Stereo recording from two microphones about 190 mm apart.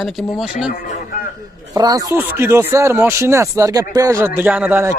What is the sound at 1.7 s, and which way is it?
Speech, 20° right (ahead or behind).